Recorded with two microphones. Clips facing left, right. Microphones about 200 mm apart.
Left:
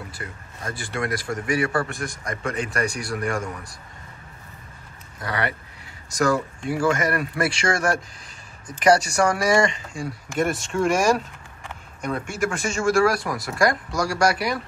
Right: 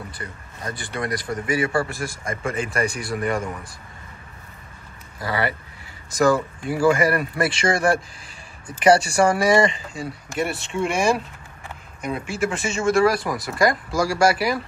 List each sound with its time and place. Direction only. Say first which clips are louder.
0.9 s a man's voice: even; centre (ahead or behind)
5.2 s a man's voice: right 2 dB; 5° right (ahead or behind)
10.3 s speech: left 2 dB; 45° left (ahead or behind)
12.0 s a man's voice: right 1 dB; 5° right (ahead or behind)